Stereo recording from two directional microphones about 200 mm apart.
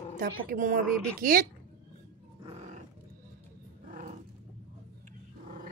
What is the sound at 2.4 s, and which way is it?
Roaring cats, 30° right (ahead or behind).